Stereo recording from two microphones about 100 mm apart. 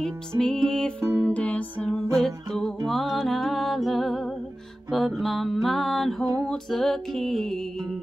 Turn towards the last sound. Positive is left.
turn(degrees=5)  # may be behind; listen again after turning